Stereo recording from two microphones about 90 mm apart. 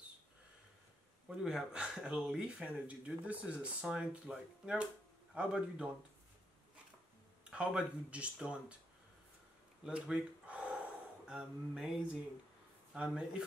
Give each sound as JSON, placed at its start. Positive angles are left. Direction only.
{"t": 1.3, "sound": "speech", "side_deg": -10}
{"t": 7.4, "sound": "speech", "side_deg": -15}
{"t": 9.8, "sound": "a sound", "side_deg": -10}
{"t": 11.2, "sound": "speech", "side_deg": -5}